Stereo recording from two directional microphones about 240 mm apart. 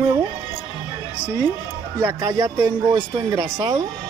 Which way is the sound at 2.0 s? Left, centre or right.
Centre.